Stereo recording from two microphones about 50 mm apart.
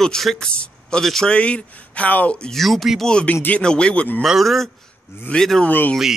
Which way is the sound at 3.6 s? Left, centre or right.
Centre.